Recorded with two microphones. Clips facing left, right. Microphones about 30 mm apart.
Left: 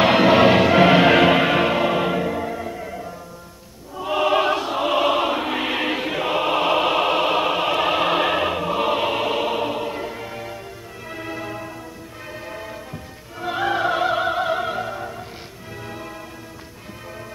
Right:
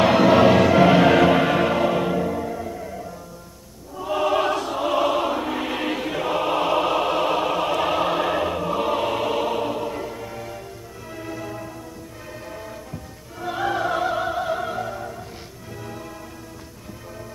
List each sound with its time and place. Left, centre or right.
0.0 s music: left
3.9 s choir: left
11.1 s music: left
13.4 s opera: left